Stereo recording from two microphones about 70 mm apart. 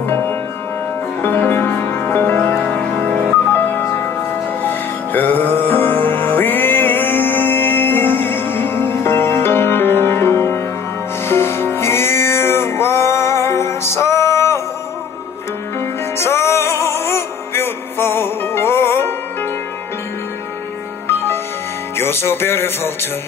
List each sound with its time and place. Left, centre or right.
0.0 s music: left
16.2 s music: left
21.9 s music: left